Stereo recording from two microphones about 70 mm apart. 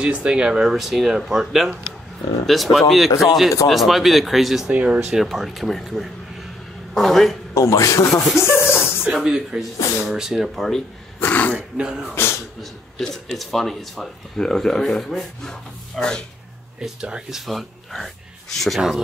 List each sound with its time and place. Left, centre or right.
0.0 s speech: centre
4.6 s speech: centre
5.2 s speech: centre
7.5 s a man's voice: left
8.4 s a sound: left
9.0 s speech: centre
11.1 s throat clearing: left
11.5 s speech: centre
13.0 s speech: centre
16.8 s speech: centre